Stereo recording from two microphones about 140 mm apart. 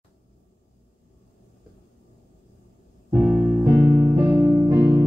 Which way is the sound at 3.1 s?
5° right (ahead or behind).